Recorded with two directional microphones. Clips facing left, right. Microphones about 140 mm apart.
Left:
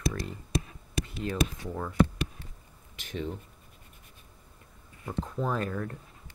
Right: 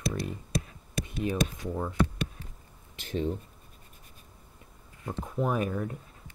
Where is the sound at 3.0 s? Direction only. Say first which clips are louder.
Right 4 dB; 30° right (ahead or behind).